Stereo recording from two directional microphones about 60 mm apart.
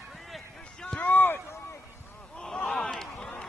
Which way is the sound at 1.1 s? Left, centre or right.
Left.